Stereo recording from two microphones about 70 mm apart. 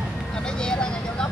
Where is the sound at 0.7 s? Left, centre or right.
Centre.